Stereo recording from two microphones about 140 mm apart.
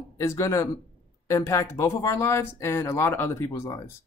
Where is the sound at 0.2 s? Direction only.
20° left (ahead or behind).